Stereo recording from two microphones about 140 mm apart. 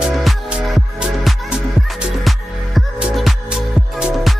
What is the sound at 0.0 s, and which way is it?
Music, centre (ahead or behind).